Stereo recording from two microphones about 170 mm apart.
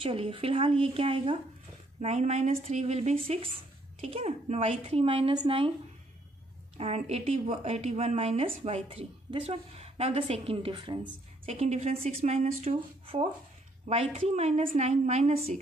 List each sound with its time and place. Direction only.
0.0 s a woman's voice: 35° right (ahead or behind)
6.8 s a woman's voice: 40° right (ahead or behind)